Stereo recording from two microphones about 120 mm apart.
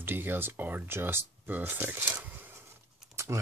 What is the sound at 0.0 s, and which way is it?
Speech, 15° right (ahead or behind).